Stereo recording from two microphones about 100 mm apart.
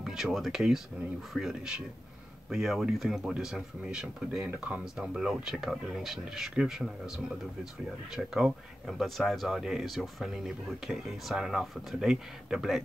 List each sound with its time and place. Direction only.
0.0 s speech: 5° right (ahead or behind)
8.8 s speech: centre (ahead or behind)